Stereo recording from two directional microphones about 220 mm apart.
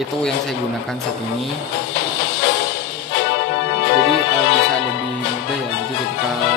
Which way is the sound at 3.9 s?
60° left (ahead or behind).